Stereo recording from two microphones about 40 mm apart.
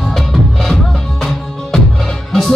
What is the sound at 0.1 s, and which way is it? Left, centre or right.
Music, centre.